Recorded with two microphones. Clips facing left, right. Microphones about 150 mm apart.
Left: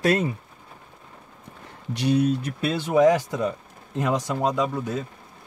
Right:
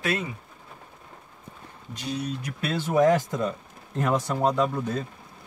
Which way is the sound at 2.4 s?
20° left (ahead or behind).